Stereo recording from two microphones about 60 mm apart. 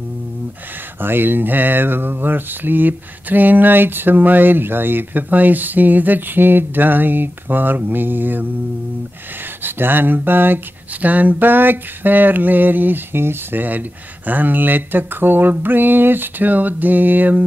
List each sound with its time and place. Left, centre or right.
1.0 s speech: right
9.6 s speech: right